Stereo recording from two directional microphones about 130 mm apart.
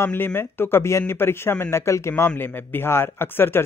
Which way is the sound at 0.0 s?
15° left (ahead or behind).